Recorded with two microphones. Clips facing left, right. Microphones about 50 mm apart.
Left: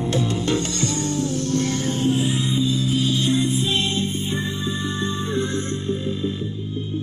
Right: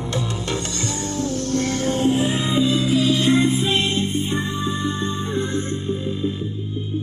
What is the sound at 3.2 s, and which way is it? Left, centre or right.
Music, right.